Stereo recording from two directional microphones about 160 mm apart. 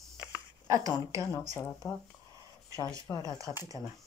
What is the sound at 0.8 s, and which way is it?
Speech, 20° right (ahead or behind).